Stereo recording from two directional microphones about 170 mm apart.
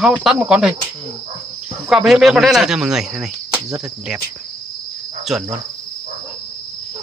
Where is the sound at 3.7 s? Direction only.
20° right (ahead or behind).